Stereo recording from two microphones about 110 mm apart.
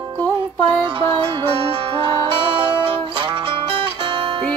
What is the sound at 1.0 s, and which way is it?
Music, 45° right (ahead or behind).